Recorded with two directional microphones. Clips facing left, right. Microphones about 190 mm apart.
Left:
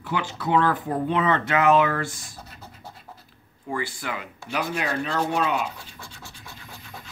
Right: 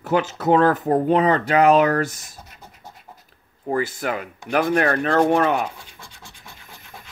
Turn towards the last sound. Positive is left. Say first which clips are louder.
# right 6 dB
turn(degrees=-55)  # may be behind; listen again after turning